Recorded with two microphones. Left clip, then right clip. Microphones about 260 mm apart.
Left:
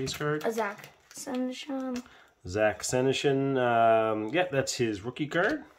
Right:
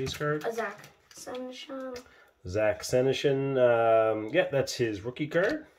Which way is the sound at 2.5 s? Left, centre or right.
Centre.